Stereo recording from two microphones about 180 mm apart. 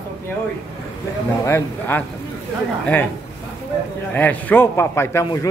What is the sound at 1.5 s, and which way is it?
Speech, 10° left (ahead or behind).